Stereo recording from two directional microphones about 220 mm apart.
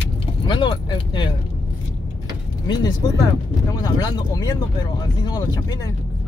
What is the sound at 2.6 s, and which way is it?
Speech, 15° left (ahead or behind).